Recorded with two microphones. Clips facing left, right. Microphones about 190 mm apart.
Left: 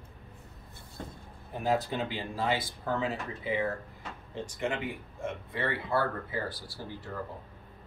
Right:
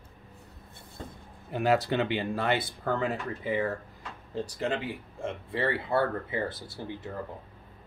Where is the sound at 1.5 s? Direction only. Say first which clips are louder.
Right 4 dB; 75° right (ahead or behind); by 3.6 s 55° right (ahead or behind).